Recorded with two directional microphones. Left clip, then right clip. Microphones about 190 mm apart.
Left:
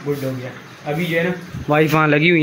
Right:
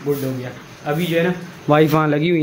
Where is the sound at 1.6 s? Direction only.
20° right (ahead or behind).